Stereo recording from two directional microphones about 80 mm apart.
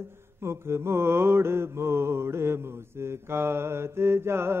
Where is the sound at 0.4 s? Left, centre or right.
Right.